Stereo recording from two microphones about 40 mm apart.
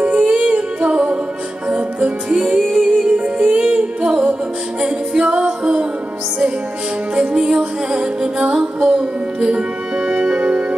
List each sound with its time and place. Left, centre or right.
0.0 s music: right
7.2 s music: centre